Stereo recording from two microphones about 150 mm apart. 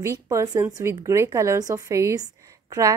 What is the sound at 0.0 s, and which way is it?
A woman's voice, 20° right (ahead or behind).